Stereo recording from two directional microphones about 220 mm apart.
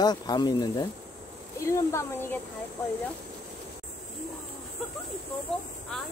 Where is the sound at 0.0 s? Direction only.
20° left (ahead or behind).